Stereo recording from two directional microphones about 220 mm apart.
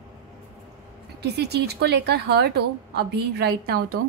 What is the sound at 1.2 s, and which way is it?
A woman's voice, 45° right (ahead or behind).